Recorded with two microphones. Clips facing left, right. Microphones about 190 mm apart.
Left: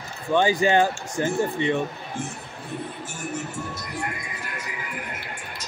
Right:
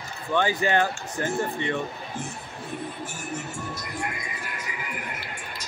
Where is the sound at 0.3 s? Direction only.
20° left (ahead or behind).